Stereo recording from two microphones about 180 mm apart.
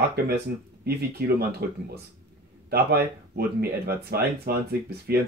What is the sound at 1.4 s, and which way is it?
Speech, 60° right (ahead or behind).